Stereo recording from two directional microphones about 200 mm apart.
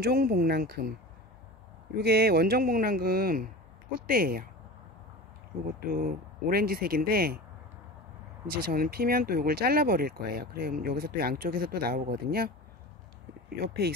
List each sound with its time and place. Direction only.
0.0 s speech: 50° right (ahead or behind)
2.0 s speech: 50° right (ahead or behind)
5.9 s speech: 45° right (ahead or behind)
8.5 s speech: 45° right (ahead or behind)
13.6 s speech: 50° right (ahead or behind)